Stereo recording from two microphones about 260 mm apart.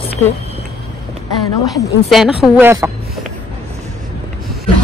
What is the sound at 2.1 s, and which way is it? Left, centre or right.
Speech, centre.